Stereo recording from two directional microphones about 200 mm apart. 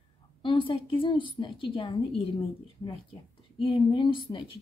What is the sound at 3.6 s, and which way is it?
Speech, 25° left (ahead or behind).